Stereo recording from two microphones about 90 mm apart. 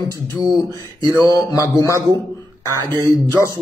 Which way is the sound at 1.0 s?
40° left (ahead or behind).